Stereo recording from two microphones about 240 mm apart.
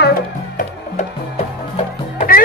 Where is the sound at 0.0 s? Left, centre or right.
Left.